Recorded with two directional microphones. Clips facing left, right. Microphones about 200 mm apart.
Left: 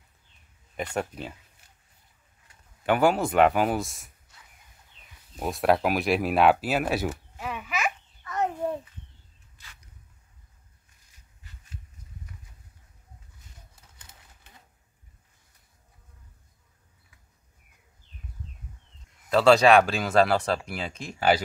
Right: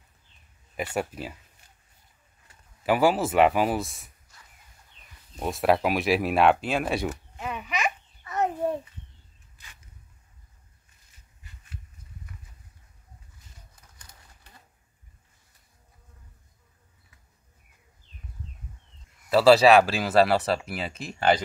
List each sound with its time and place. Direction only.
0.7 s speech: 5° right (ahead or behind)
2.8 s speech: centre (ahead or behind)
5.3 s speech: centre (ahead or behind)
13.7 s a sound: 25° left (ahead or behind)
19.2 s speech: 5° right (ahead or behind)